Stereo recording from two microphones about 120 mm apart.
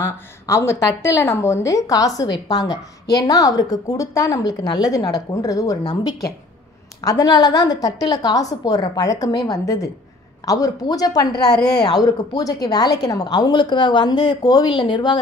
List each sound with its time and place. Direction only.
0.0 s speech: 25° left (ahead or behind); by 15.1 s 40° left (ahead or behind)